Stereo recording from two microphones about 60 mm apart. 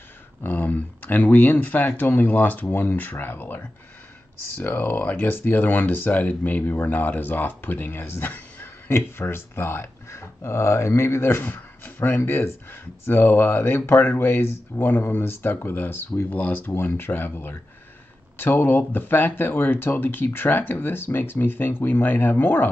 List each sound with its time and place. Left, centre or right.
0.4 s speech: left
16.7 s speech: left